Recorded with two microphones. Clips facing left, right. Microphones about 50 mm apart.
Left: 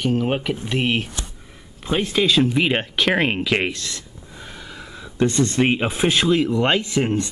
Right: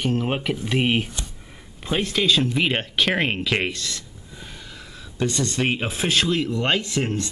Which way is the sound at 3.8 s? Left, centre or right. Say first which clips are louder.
Even; centre.